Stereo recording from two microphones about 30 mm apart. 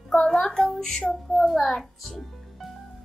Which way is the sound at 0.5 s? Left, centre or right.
Left.